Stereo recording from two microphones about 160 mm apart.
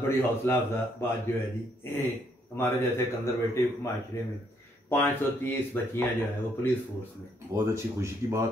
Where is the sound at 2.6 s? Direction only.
15° left (ahead or behind).